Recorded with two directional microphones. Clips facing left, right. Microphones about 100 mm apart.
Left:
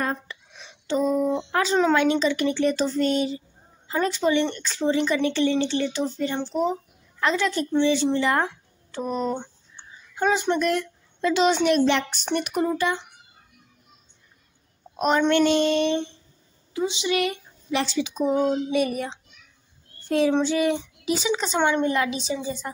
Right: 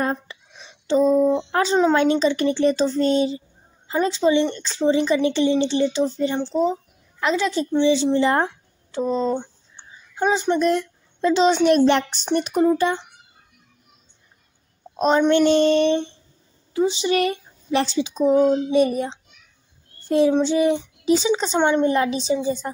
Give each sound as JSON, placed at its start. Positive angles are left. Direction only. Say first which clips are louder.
{"t": 0.0, "sound": "a sound", "louder": "right 4 dB", "side_deg": -30}
{"t": 1.5, "sound": "a woman's voice", "louder": "right 3 dB", "side_deg": -35}
{"t": 8.2, "sound": "a sound", "louder": "right 4 dB", "side_deg": -30}
{"t": 10.2, "sound": "a woman's voice", "louder": "right 3 dB", "side_deg": -15}
{"t": 11.6, "sound": "speech", "louder": "right 4 dB", "side_deg": -40}
{"t": 15.0, "sound": "a woman's voice", "louder": "right 3 dB", "side_deg": -30}
{"t": 20.4, "sound": "child singing", "louder": "right 4 dB", "side_deg": -25}
{"t": 21.2, "sound": "speech", "louder": "right 3 dB", "side_deg": -30}